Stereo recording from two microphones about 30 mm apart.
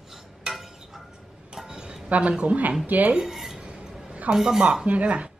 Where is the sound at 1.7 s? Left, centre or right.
Right.